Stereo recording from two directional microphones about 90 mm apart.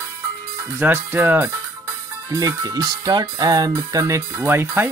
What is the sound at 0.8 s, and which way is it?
Speech, 25° right (ahead or behind).